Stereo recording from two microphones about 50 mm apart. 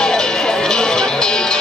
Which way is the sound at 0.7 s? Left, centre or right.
Centre.